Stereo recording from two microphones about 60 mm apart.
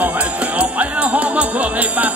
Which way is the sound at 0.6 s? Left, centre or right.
Right.